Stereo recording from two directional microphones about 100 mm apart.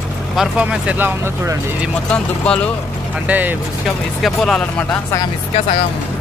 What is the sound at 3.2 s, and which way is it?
Speech, 15° right (ahead or behind).